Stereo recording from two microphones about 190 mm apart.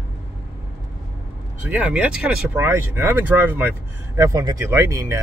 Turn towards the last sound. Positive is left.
turn(degrees=-15)  # may be behind; listen again after turning